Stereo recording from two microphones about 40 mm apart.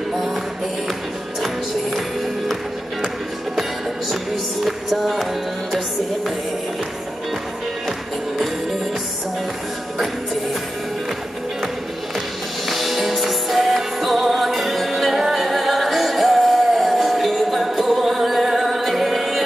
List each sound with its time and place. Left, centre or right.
1.4 s music: centre
4.6 s music: centre
12.6 s music: centre